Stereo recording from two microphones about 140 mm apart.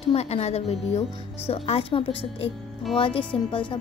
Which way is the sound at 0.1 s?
50° left (ahead or behind).